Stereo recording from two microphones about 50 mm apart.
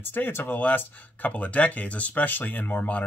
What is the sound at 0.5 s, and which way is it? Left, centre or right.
Speech, left.